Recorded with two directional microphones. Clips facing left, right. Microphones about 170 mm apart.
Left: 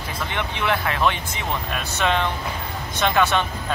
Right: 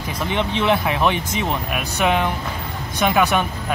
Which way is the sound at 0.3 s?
20° right (ahead or behind).